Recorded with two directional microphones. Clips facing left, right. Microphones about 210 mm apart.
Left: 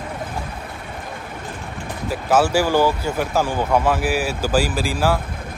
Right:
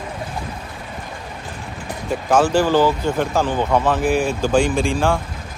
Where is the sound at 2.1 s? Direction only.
5° left (ahead or behind).